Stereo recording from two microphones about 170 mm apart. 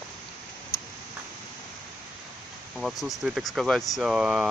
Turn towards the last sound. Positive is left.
turn(degrees=-5)  # may be behind; listen again after turning